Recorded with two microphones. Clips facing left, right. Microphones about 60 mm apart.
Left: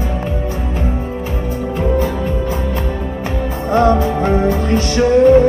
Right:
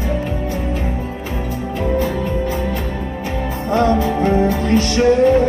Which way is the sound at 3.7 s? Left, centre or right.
Left.